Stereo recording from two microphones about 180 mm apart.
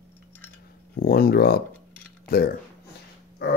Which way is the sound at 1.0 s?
55° left (ahead or behind).